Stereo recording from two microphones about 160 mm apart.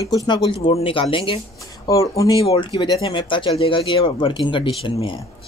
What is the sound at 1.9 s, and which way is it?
Speech, 20° left (ahead or behind).